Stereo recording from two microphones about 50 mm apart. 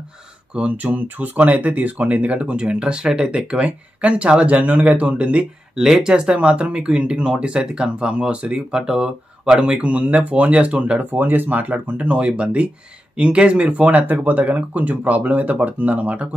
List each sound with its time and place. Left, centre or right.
0.6 s speech: right
5.8 s speech: centre; by 16.3 s right